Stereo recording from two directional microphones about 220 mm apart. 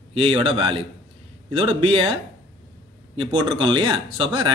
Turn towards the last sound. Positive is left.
turn(degrees=-20)  # may be behind; listen again after turning